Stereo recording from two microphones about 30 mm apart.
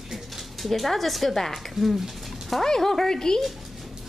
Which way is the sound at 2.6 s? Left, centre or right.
Centre.